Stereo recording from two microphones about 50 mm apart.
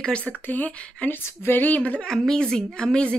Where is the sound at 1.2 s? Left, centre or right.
Left.